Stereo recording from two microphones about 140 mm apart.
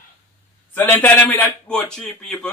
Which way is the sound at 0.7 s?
10° left (ahead or behind).